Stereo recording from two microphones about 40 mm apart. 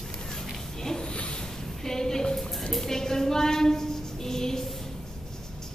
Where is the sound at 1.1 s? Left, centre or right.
Left.